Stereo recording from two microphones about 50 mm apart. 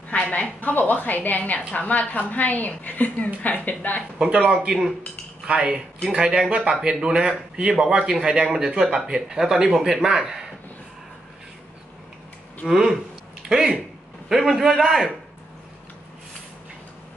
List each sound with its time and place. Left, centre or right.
0.3 s a woman's voice: left
4.6 s a man's voice: centre
5.4 s cutlery: right
6.0 s a man's voice: centre
12.6 s a man's voice: centre